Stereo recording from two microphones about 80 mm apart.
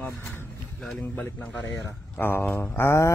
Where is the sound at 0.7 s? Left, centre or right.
Centre.